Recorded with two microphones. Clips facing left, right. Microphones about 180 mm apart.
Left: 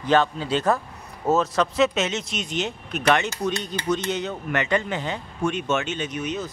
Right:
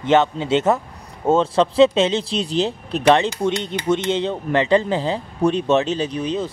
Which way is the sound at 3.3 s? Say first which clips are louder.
Right 5 dB; 25° right (ahead or behind).